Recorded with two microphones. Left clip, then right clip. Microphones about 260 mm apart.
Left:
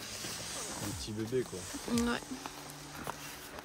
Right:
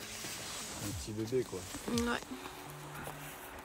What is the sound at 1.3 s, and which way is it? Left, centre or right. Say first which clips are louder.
Speech: even; centre.